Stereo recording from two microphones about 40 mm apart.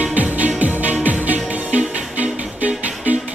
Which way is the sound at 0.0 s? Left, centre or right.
Right.